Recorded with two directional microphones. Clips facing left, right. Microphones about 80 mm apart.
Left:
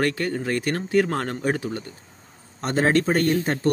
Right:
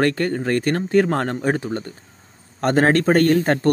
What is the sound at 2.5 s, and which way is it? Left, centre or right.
Speech, right.